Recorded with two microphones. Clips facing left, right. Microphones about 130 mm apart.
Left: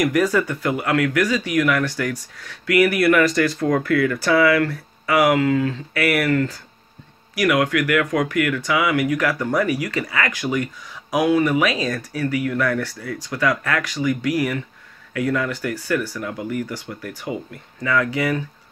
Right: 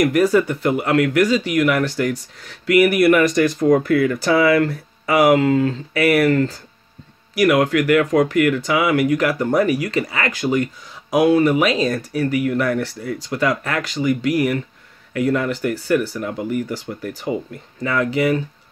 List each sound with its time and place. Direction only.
0.0 s speech: 30° right (ahead or behind)